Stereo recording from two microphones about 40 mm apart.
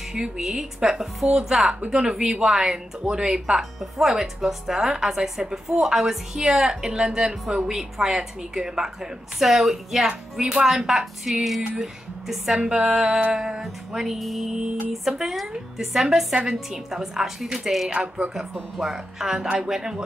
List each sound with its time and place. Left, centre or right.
0.1 s a woman's voice: centre
3.3 s music: centre
4.1 s a woman's voice: centre
12.5 s music: centre
12.8 s a woman's voice: centre
17.8 s music: right
18.8 s a woman's voice: centre